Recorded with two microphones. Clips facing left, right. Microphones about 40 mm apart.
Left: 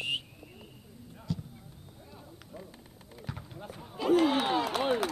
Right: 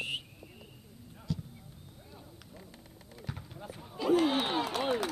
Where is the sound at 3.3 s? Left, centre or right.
Centre.